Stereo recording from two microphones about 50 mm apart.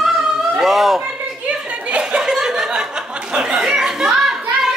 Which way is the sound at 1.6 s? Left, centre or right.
Right.